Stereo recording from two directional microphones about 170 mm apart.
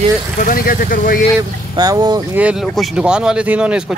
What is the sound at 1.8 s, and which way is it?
Speech, 25° right (ahead or behind).